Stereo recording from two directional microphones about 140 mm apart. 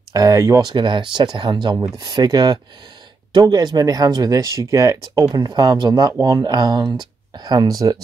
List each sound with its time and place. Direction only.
0.1 s speech: 25° right (ahead or behind)